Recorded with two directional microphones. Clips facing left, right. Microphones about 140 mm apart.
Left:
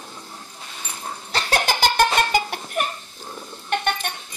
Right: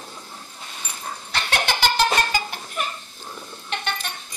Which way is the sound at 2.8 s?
55° left (ahead or behind).